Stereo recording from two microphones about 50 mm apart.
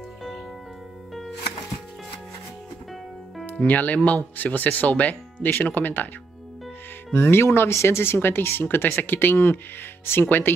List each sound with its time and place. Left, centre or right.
3.6 s speech: left
7.1 s speech: left